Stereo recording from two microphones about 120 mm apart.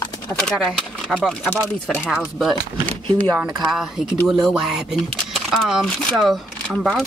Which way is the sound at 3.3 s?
20° right (ahead or behind).